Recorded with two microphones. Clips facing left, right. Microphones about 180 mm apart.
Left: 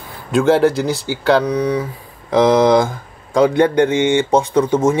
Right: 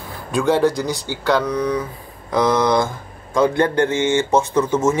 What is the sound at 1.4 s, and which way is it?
A man's voice, 15° left (ahead or behind).